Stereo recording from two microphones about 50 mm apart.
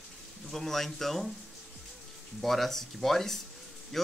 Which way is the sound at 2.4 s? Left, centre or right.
Centre.